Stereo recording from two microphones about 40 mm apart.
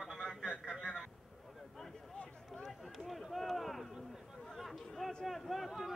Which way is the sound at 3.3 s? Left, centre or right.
Centre.